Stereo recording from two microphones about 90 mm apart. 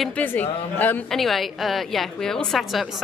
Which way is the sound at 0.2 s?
20° left (ahead or behind).